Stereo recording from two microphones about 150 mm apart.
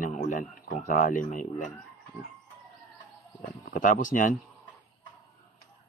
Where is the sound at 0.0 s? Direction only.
60° left (ahead or behind).